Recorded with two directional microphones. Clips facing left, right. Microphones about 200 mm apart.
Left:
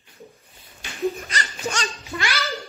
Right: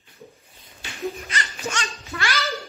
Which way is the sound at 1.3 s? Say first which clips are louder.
Left 1 dB; 35° left (ahead or behind).